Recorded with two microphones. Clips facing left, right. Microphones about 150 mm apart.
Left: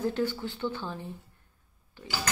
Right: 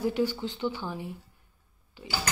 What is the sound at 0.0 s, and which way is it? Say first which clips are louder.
A woman's voice: right 2 dB; 15° right (ahead or behind).